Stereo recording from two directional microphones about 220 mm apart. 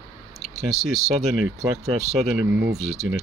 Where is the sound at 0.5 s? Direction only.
Centre (ahead or behind).